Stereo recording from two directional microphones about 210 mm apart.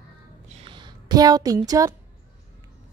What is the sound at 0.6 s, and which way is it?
A woman's voice, 20° right (ahead or behind).